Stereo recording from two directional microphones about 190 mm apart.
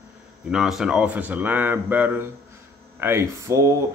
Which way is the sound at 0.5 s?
Centre (ahead or behind).